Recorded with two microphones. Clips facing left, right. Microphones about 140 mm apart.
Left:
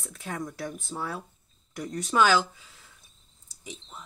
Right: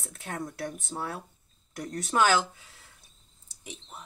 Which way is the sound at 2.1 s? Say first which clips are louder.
Left 2 dB; 50° right (ahead or behind).